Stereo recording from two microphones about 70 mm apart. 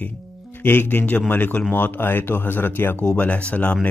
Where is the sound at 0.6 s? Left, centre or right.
Left.